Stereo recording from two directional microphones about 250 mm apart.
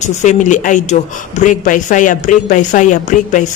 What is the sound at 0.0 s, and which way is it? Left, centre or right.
A woman's voice, left.